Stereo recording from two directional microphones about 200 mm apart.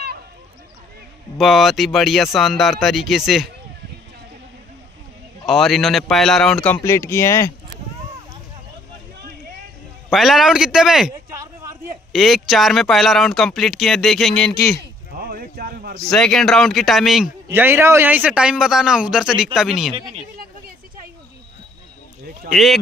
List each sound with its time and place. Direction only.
1.4 s speech: centre (ahead or behind)
5.4 s speech: centre (ahead or behind)
10.1 s speech: centre (ahead or behind)
11.3 s a sound: 15° right (ahead or behind)
12.1 s speech: centre (ahead or behind)
15.1 s a sound: 50° right (ahead or behind)
16.0 s speech: 5° left (ahead or behind)
22.5 s speech: centre (ahead or behind)